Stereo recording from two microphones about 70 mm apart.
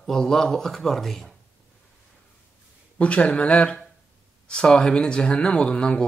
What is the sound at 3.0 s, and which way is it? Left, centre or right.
Speech, centre.